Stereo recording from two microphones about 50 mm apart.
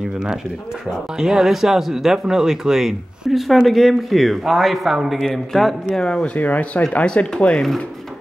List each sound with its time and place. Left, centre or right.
1.1 s speech: centre
5.9 s speech: centre
6.3 s speech: left